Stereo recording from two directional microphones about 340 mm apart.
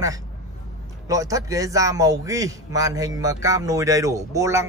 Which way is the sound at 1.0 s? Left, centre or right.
Centre.